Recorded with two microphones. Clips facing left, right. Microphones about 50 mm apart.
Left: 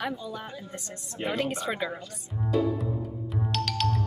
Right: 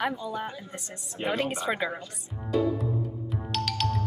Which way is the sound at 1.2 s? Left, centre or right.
Centre.